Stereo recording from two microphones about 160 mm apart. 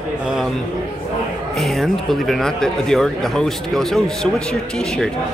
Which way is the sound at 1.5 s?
Centre (ahead or behind).